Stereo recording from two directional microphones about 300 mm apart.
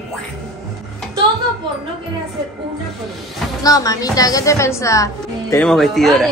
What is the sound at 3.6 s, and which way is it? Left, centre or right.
A woman's voice, centre.